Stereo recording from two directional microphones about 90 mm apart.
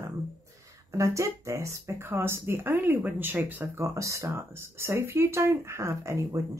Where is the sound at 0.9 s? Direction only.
35° right (ahead or behind).